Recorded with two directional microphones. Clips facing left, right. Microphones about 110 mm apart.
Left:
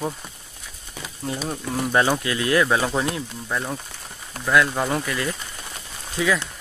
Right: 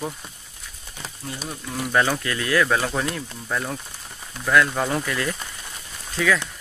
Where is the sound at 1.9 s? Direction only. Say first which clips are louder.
Left 1 dB; 15° left (ahead or behind).